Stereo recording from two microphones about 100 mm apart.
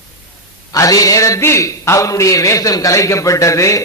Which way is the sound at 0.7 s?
35° left (ahead or behind).